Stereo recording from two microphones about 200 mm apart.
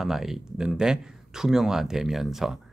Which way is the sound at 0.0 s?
Centre (ahead or behind).